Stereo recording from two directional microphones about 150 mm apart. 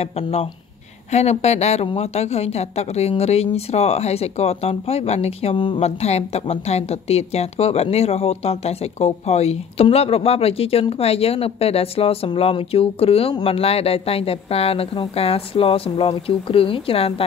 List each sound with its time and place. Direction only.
0.0 s a woman's voice: 45° left (ahead or behind)